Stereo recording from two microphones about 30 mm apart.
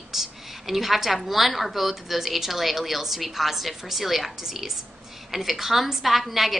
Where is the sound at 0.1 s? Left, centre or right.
Centre.